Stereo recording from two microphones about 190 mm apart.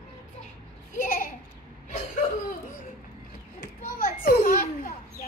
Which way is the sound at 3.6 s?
50° left (ahead or behind).